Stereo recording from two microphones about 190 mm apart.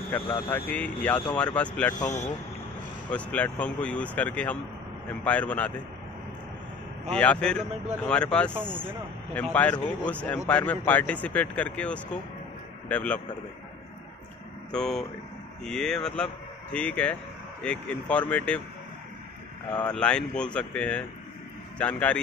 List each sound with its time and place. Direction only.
0.1 s speech: 10° left (ahead or behind)
2.0 s speech: 40° left (ahead or behind)
3.1 s speech: 5° left (ahead or behind)
7.1 s speech: 5° left (ahead or behind)
14.7 s speech: 5° left (ahead or behind)
19.7 s speech: 5° left (ahead or behind)